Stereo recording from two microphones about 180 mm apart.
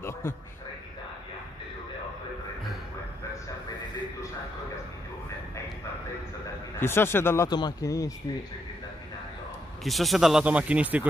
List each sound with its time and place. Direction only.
0.0 s a man's voice: 15° left (ahead or behind)
6.8 s speech: 15° left (ahead or behind)
9.8 s speech: centre (ahead or behind)